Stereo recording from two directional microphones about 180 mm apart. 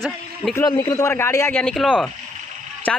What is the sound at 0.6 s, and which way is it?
A man's voice, 20° left (ahead or behind).